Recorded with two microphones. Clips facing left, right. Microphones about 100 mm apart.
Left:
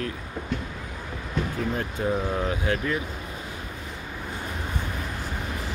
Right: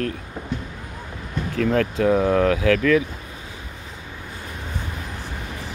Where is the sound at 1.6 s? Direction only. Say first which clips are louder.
Right 12 dB; 75° right (ahead or behind); by 3.0 s 90° right.